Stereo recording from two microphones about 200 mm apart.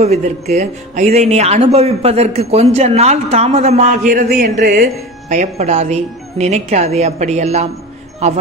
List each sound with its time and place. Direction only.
0.0 s speech: 35° right (ahead or behind)
5.3 s speech: 35° right (ahead or behind)